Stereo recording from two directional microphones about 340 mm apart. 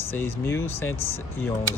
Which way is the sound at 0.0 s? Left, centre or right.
Centre.